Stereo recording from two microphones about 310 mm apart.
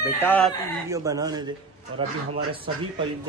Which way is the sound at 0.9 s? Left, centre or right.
Centre.